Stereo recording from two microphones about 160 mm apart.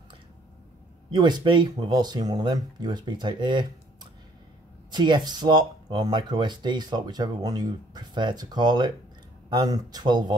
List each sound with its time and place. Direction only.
1.1 s speech: 30° right (ahead or behind)